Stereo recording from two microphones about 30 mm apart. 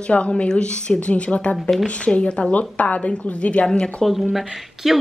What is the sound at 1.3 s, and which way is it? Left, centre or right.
A woman's voice, left.